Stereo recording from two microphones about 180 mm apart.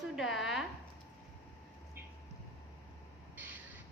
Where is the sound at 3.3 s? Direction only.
10° right (ahead or behind).